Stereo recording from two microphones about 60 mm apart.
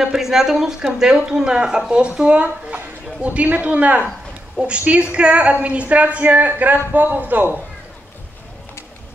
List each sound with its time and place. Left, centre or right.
0.0 s a woman's voice: centre; by 7.6 s right